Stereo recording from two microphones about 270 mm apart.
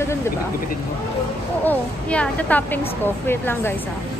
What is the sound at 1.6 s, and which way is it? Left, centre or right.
A woman's voice, centre.